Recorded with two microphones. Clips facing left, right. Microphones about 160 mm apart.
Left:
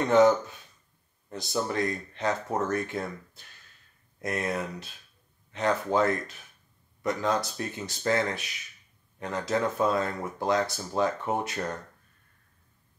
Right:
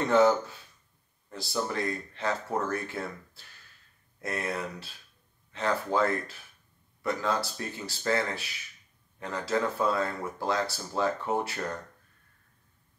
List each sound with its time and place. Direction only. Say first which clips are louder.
0.0 s speech: left 2 dB; 20° left (ahead or behind)